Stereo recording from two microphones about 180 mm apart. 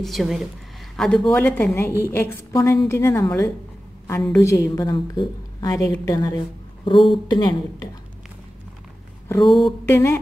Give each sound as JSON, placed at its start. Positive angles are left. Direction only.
{"t": 0.0, "sound": "a woman's voice", "side_deg": 0}
{"t": 9.5, "sound": "a woman's voice", "side_deg": 0}
{"t": 9.8, "sound": "a woman's voice", "side_deg": 15}